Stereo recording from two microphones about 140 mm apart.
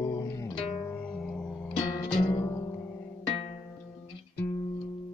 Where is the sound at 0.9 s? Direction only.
5° left (ahead or behind).